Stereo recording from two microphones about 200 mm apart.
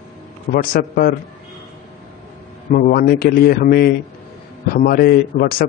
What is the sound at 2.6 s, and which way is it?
Speech, 45° left (ahead or behind).